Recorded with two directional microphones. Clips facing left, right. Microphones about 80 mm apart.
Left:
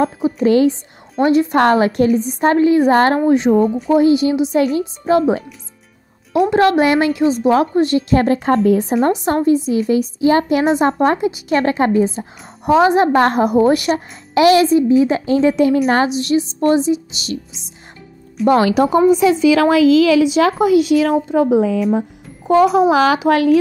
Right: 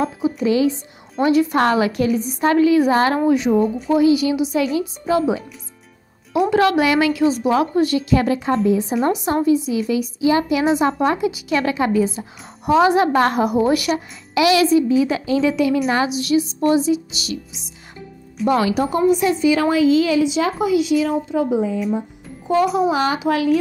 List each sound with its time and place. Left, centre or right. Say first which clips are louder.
0.4 s a woman's voice: left 5 dB; left
1.2 s a woman's voice: left 3 dB; left
3.3 s a woman's voice: left 3 dB; left
4.6 s a woman's voice: left 4 dB; left
6.5 s a woman's voice: left 3 dB; left
7.2 s a woman's voice: left 3 dB; left
9.2 s a woman's voice: left 2 dB; left
12.2 s a woman's voice: left 3 dB; left
16.2 s a woman's voice: left 2 dB; left
18.5 s speech: left 5 dB; left
19.4 s speech: left 3 dB; left
22.5 s speech: left 5 dB; left